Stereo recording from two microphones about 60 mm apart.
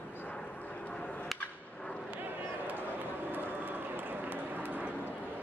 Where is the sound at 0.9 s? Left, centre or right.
Centre.